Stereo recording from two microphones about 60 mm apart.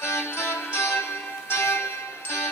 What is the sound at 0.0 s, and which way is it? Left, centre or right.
Music, left.